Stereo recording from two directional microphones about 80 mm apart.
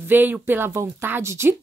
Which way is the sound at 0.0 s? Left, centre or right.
Right.